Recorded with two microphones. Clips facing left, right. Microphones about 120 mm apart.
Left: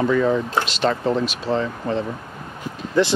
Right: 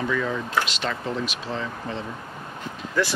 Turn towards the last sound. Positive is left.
turn(degrees=25)  # may be behind; listen again after turning